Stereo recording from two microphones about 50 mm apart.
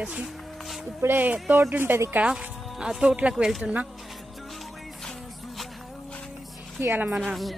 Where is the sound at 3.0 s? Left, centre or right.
Right.